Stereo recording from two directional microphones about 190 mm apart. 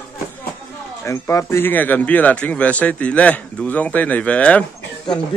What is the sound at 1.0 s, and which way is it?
A man's voice, 15° left (ahead or behind).